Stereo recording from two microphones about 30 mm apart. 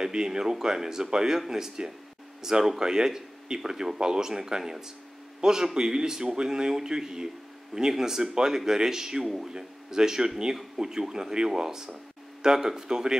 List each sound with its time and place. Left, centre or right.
0.0 s speech: right